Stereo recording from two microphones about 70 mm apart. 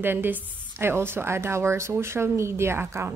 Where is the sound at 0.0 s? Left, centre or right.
Right.